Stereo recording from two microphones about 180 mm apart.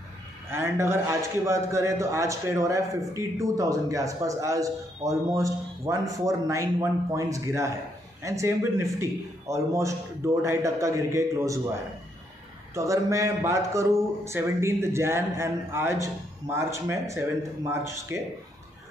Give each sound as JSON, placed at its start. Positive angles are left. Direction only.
{"t": 0.5, "sound": "speech", "side_deg": -15}
{"t": 12.7, "sound": "speech", "side_deg": -15}